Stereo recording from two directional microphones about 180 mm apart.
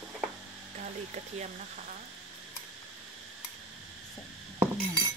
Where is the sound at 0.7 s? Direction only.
40° right (ahead or behind).